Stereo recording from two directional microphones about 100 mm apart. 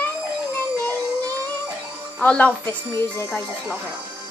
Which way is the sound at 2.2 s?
10° left (ahead or behind).